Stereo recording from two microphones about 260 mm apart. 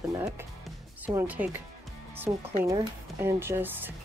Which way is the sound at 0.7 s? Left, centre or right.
Centre.